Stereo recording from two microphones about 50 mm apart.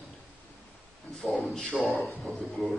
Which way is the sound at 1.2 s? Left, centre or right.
Centre.